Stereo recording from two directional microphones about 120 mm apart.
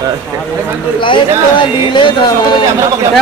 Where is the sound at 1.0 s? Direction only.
45° left (ahead or behind).